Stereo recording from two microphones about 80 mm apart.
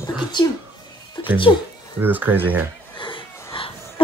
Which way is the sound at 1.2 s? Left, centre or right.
Left.